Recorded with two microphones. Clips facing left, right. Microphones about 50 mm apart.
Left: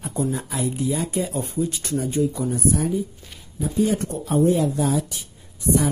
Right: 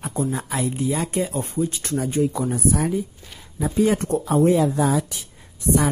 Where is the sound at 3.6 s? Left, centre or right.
Right.